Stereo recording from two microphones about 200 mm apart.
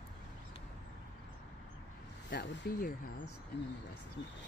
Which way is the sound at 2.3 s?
55° left (ahead or behind).